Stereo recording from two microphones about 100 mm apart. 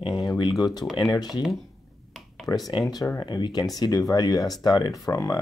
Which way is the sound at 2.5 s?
20° left (ahead or behind).